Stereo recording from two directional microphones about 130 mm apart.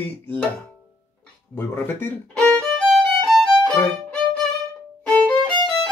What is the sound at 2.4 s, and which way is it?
Violin, 5° left (ahead or behind).